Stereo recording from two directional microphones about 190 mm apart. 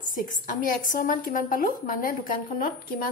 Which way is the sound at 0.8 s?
45° left (ahead or behind).